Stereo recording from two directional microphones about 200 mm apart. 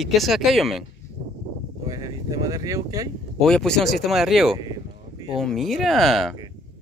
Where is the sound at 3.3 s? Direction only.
Centre (ahead or behind).